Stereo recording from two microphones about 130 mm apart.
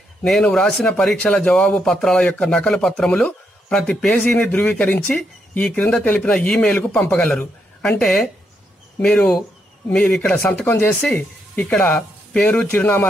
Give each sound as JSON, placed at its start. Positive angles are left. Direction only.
{"t": 0.2, "sound": "speech", "side_deg": 5}